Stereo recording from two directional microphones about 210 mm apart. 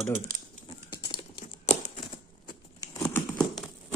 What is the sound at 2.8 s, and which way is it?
Crumpling, 10° left (ahead or behind).